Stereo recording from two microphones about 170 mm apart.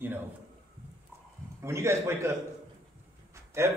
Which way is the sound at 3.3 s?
15° right (ahead or behind).